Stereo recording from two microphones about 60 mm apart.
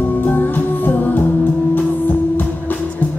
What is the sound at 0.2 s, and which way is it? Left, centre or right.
Music, left.